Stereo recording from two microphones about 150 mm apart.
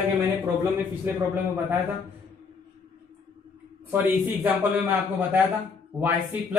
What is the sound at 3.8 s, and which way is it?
A man's voice, 10° right (ahead or behind).